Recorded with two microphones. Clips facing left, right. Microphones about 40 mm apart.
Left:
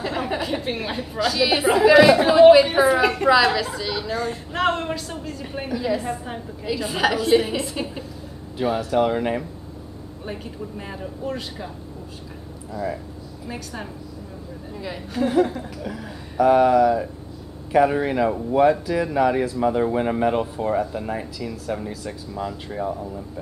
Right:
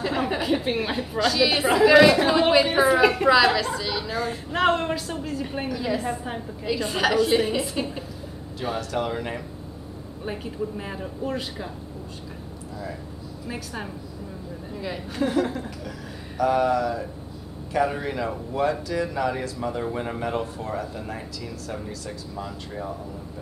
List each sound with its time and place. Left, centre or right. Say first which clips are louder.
0.0 s a woman's voice: even; centre
10.2 s a woman's voice: right 3 dB; centre
14.7 s a woman's voice: even; centre
15.8 s speech: left 4 dB; centre